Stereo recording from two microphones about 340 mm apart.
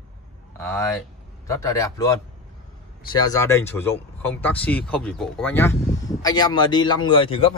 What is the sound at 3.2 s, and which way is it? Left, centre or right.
Speech, centre.